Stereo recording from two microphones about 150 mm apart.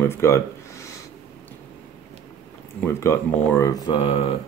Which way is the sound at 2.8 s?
15° left (ahead or behind).